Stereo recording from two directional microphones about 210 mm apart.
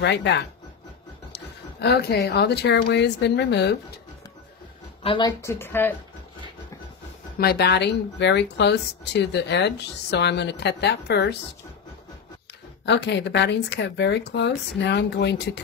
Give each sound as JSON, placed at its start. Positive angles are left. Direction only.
{"t": 0.0, "sound": "speech", "side_deg": 55}
{"t": 5.0, "sound": "speech", "side_deg": 25}
{"t": 5.4, "sound": "speech", "side_deg": 10}
{"t": 7.3, "sound": "speech", "side_deg": 50}
{"t": 12.8, "sound": "speech", "side_deg": 55}